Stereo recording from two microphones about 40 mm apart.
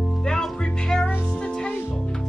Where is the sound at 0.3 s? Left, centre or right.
Centre.